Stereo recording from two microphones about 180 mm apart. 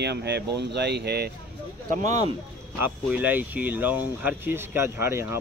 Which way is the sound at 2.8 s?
10° right (ahead or behind).